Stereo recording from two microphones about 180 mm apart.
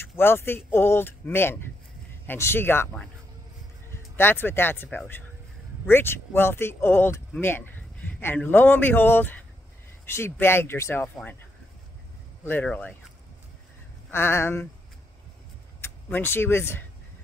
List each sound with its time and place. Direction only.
0.0 s speech: 10° left (ahead or behind)
12.4 s speech: 10° left (ahead or behind)
14.1 s speech: 15° left (ahead or behind)
15.8 s speech: 10° left (ahead or behind)